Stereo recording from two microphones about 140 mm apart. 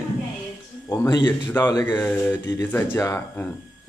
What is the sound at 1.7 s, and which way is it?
Speech, 25° left (ahead or behind).